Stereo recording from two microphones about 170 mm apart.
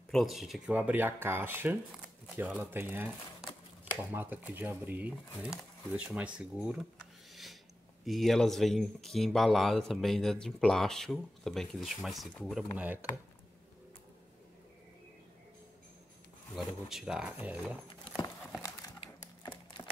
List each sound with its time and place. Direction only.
0.1 s speech: centre (ahead or behind)
8.0 s speech: centre (ahead or behind)
16.5 s speech: centre (ahead or behind)
17.8 s horse: 20° left (ahead or behind)